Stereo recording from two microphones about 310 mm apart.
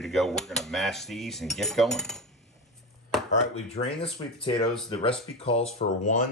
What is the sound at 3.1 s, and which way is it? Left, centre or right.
Chopping, centre.